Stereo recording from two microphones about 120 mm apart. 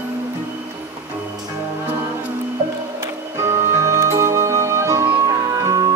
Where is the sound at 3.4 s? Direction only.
25° right (ahead or behind).